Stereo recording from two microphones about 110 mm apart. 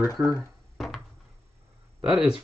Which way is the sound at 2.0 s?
10° right (ahead or behind).